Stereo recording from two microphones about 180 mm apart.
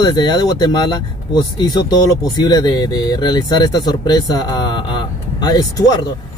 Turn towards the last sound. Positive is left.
turn(degrees=20)  # may be behind; listen again after turning